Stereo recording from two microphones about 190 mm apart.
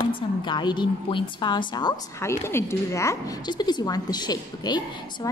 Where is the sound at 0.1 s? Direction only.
25° left (ahead or behind).